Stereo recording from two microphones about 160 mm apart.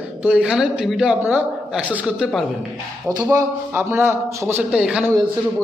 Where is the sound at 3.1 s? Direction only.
20° right (ahead or behind).